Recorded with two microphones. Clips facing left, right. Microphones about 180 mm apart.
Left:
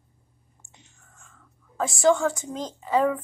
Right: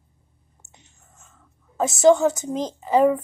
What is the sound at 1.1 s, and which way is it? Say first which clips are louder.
Speech: even; 20° right (ahead or behind).